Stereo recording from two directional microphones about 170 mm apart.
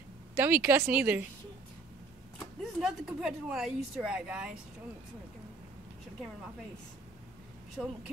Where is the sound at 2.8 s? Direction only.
Centre (ahead or behind).